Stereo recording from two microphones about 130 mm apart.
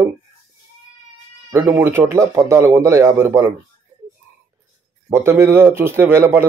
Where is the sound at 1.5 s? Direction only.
15° right (ahead or behind).